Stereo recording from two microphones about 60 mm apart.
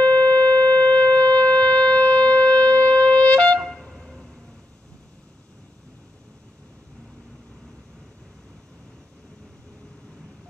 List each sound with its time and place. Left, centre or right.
0.0 s shofar: left
2.8 s wind instrument: left
3.5 s wind instrument: centre